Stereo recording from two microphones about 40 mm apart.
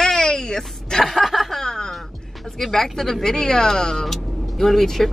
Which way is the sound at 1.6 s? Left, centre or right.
Centre.